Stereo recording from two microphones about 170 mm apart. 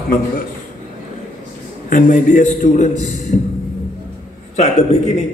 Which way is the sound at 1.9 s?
50° left (ahead or behind).